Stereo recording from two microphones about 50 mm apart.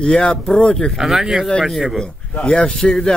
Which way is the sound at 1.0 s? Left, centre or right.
Centre.